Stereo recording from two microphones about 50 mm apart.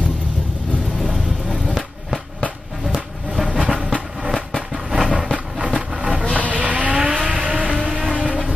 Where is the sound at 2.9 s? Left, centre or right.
Centre.